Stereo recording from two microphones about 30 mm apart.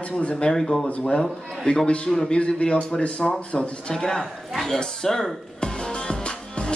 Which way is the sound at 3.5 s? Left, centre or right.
Left.